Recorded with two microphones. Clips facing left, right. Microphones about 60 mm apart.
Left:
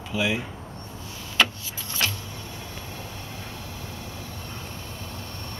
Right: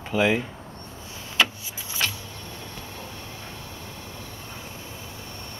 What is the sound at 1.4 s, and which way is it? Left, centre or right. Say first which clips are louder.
Vehicle: left 1 dB; centre.